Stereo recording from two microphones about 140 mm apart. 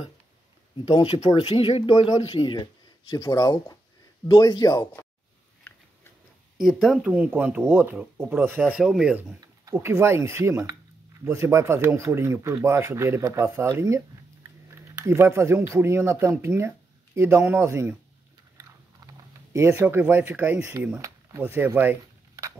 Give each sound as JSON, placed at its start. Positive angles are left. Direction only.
{"t": 1.2, "sound": "a man's voice", "side_deg": 35}
{"t": 6.6, "sound": "speech", "side_deg": 0}
{"t": 9.7, "sound": "speech", "side_deg": -20}
{"t": 19.5, "sound": "speech", "side_deg": -20}